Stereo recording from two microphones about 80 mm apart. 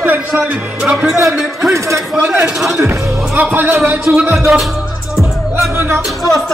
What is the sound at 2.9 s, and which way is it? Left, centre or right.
Speech, right.